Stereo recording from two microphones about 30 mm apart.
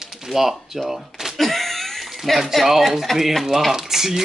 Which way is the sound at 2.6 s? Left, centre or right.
Centre.